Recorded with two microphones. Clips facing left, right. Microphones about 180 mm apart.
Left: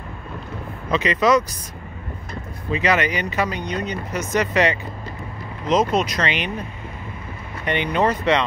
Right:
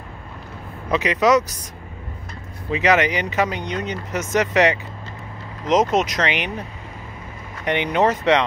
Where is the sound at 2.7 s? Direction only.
15° right (ahead or behind).